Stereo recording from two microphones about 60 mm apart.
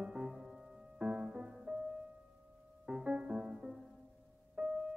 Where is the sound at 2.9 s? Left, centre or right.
Centre.